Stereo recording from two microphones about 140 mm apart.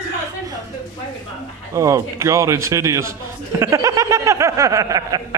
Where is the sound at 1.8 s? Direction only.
20° right (ahead or behind).